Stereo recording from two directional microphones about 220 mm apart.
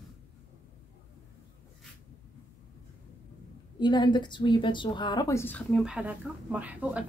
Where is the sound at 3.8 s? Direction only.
20° left (ahead or behind); by 7.0 s 5° right (ahead or behind).